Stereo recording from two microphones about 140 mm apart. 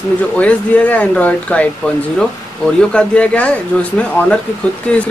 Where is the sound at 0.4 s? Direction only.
10° left (ahead or behind).